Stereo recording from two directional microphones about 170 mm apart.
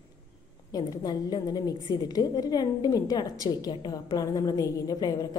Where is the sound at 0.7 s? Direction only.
25° left (ahead or behind).